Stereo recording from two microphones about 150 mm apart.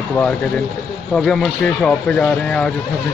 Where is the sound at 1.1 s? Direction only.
5° left (ahead or behind).